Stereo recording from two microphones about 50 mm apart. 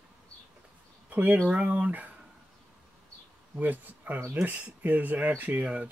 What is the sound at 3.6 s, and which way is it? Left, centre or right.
Speech, right.